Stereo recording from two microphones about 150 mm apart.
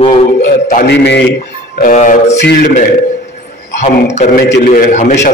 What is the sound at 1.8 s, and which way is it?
Speech, 60° left (ahead or behind).